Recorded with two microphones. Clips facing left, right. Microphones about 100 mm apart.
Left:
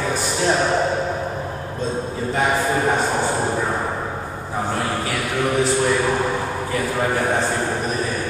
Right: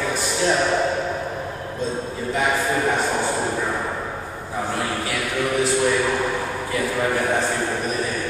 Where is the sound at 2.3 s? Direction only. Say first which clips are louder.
Left 2 dB; 25° left (ahead or behind).